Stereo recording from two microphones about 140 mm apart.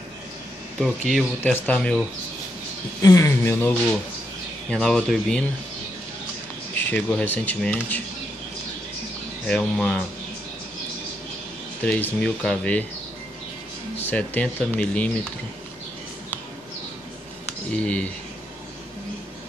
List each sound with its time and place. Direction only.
0.7 s speech: centre (ahead or behind)
3.0 s speech: 20° left (ahead or behind); by 5.4 s 5° left (ahead or behind)
6.7 s speech: 10° left (ahead or behind)
9.5 s speech: 5° left (ahead or behind)
11.8 s speech: 10° left (ahead or behind)
13.9 s speech: 15° left (ahead or behind)
17.6 s speech: 10° left (ahead or behind)